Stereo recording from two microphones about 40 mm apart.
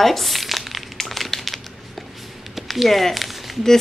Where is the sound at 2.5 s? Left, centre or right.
Centre.